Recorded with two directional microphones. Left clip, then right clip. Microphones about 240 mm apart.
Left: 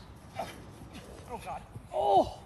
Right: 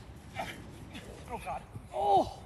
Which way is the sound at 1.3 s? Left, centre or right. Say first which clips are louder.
Right 1 dB; centre.